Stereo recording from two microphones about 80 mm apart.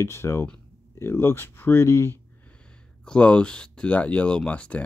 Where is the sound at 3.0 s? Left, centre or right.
Centre.